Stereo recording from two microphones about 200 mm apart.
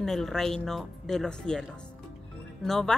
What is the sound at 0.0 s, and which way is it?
Speech, centre (ahead or behind).